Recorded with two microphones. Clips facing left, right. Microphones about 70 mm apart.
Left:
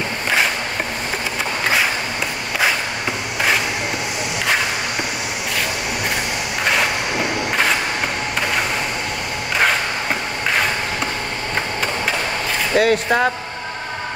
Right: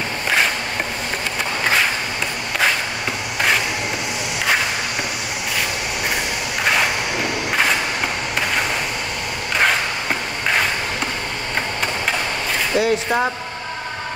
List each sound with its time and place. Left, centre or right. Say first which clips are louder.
12.7 s speech: left 3 dB; left